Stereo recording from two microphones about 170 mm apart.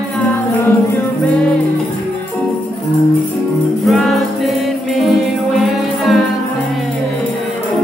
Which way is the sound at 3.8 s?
Centre (ahead or behind).